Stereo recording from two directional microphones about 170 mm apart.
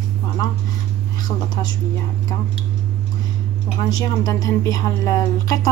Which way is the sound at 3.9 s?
20° left (ahead or behind).